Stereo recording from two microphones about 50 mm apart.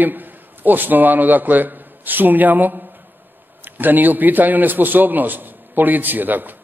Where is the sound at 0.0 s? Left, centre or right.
Right.